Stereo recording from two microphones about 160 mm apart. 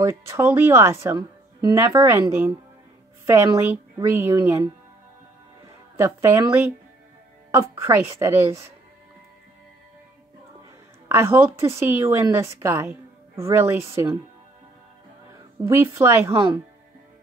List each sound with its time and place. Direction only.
0.0 s speech: 15° right (ahead or behind)
5.9 s speech: 15° right (ahead or behind)
11.1 s speech: 15° right (ahead or behind)
15.7 s speech: 15° right (ahead or behind)